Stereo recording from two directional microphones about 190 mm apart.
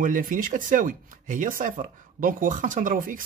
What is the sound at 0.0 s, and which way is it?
Speech, 45° right (ahead or behind).